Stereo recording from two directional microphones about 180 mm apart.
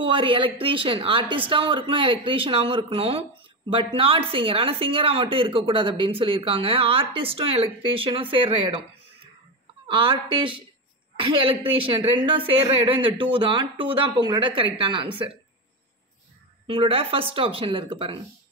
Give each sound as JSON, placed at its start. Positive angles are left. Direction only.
{"t": 0.0, "sound": "a woman's voice", "side_deg": -30}
{"t": 9.8, "sound": "speech", "side_deg": -25}
{"t": 11.1, "sound": "a woman's voice", "side_deg": -30}
{"t": 16.6, "sound": "speech", "side_deg": -30}